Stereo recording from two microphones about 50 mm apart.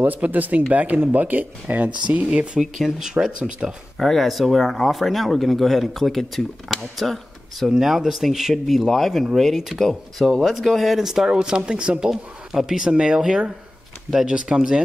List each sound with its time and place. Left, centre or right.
0.0 s speech: right; by 3.7 s centre
4.0 s speech: centre
9.8 s speech: centre